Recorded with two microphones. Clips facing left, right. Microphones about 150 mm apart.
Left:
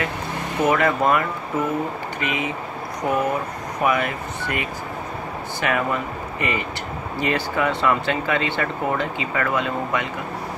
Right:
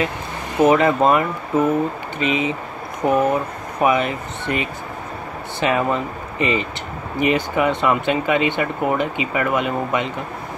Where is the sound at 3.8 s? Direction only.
20° right (ahead or behind).